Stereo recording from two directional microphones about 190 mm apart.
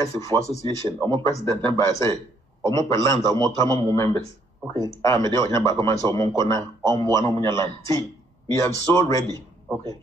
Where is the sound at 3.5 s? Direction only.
15° left (ahead or behind).